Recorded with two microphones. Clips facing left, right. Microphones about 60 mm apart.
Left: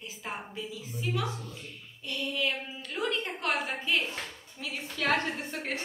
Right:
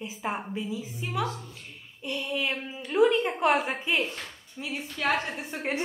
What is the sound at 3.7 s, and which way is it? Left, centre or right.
A woman's voice, centre.